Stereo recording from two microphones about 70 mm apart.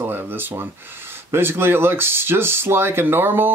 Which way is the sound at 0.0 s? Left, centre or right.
Right.